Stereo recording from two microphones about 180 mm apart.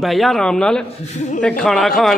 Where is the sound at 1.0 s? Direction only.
40° left (ahead or behind).